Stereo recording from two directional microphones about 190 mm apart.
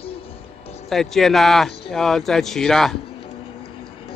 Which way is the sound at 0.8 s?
Centre (ahead or behind).